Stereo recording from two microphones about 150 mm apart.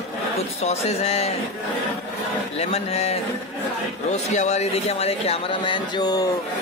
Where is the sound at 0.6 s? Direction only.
45° left (ahead or behind).